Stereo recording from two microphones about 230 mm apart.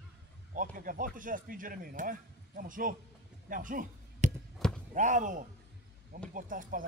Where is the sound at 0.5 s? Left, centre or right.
Right.